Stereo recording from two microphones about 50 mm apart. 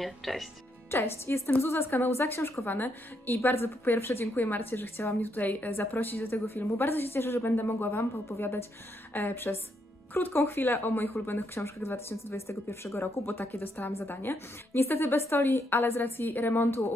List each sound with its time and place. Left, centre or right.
0.0 s speech: centre
0.9 s a woman's voice: left
8.4 s a woman's voice: left
13.0 s a woman's voice: left